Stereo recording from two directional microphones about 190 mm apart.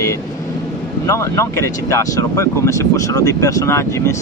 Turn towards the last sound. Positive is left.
turn(degrees=15)  # may be behind; listen again after turning